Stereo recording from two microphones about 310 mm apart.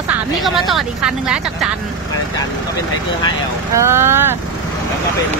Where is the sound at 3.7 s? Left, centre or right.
Centre.